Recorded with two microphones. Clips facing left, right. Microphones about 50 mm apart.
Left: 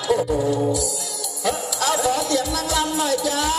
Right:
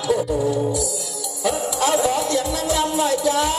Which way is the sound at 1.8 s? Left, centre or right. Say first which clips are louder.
Right 1 dB; right.